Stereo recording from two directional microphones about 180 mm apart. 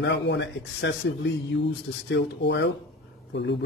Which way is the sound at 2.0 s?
75° left (ahead or behind).